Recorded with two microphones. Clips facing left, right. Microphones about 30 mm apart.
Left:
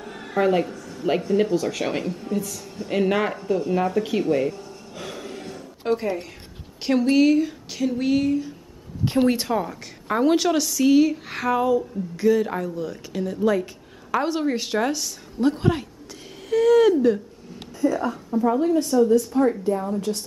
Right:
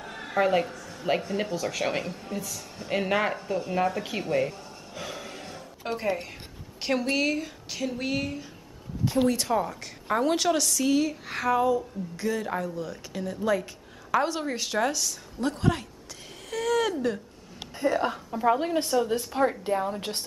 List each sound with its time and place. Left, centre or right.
0.0 s speech: centre
9.0 s speech: left
9.5 s a woman's voice: centre
17.7 s a woman's voice: right